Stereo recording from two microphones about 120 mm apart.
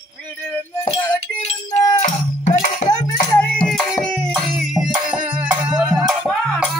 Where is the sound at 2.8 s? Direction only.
65° left (ahead or behind).